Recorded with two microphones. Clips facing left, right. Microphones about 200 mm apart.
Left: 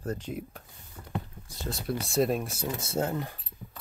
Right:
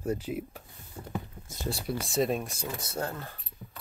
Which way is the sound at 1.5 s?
20° right (ahead or behind).